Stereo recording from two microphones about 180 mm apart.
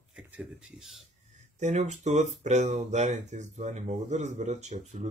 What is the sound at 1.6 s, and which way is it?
Speech, 40° right (ahead or behind).